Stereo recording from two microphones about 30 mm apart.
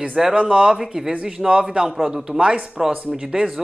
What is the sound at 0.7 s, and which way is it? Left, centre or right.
Speech, centre.